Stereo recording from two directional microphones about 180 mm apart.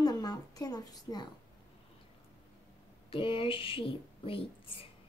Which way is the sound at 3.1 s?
30° left (ahead or behind).